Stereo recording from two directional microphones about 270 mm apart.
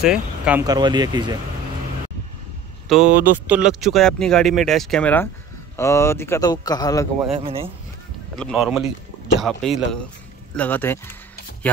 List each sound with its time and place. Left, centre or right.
0.0 s speech: centre
2.9 s speech: centre
7.3 s speech: right
8.4 s speech: centre